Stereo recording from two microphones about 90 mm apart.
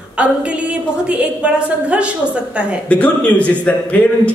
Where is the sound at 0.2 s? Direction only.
15° right (ahead or behind).